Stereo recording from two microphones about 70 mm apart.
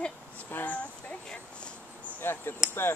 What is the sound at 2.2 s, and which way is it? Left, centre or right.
Speech, left.